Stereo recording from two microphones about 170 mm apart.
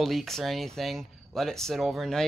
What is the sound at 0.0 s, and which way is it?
Speech, centre (ahead or behind).